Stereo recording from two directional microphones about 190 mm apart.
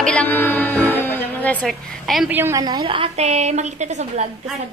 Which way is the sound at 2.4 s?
15° right (ahead or behind).